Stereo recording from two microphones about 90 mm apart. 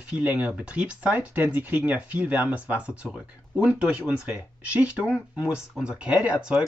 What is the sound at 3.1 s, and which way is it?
Speech, 5° right (ahead or behind).